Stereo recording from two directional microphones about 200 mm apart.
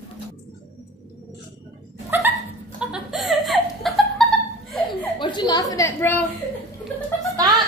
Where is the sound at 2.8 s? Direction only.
5° right (ahead or behind).